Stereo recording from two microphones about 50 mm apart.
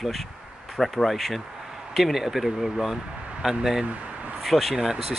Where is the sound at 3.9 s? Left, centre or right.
Right.